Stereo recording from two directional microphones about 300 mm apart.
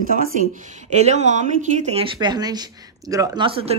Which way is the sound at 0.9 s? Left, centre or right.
Right.